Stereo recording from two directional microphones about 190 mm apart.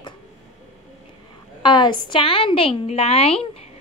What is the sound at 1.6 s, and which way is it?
A woman's voice, 25° left (ahead or behind).